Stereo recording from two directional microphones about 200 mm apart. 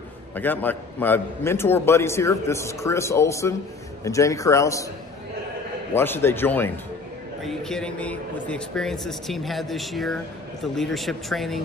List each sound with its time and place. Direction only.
0.4 s a man's voice: 10° left (ahead or behind)
5.9 s a man's voice: 10° left (ahead or behind)